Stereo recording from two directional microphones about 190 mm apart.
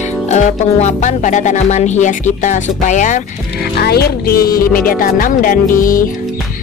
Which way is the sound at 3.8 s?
55° left (ahead or behind).